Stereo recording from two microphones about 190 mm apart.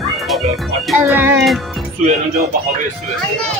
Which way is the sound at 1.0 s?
10° right (ahead or behind).